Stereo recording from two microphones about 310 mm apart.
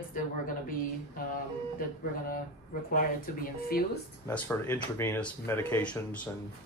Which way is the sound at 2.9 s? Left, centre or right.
Left.